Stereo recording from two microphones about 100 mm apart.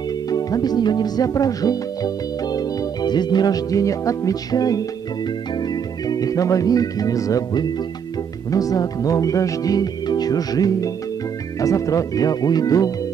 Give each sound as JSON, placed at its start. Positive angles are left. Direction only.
{"t": 0.3, "sound": "music", "side_deg": 40}
{"t": 6.0, "sound": "speech", "side_deg": 35}